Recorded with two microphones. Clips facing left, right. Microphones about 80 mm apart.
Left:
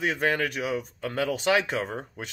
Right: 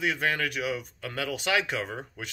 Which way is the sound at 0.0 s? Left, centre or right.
Left.